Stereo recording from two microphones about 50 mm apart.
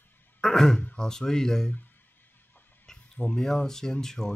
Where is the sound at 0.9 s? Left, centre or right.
Centre.